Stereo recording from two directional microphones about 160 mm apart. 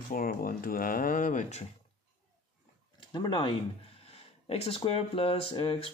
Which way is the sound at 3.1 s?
25° left (ahead or behind).